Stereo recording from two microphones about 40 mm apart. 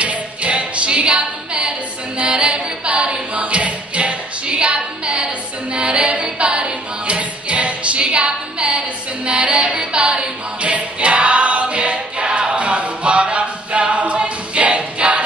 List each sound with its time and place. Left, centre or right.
0.0 s music: right
2.1 s a capella: right